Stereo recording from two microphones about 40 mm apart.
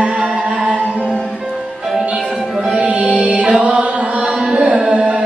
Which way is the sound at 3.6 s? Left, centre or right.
Right.